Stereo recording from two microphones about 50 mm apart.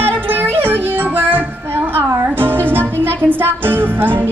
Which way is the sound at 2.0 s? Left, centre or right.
Right.